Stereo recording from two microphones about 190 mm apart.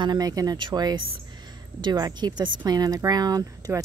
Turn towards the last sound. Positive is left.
turn(degrees=-20)  # may be behind; listen again after turning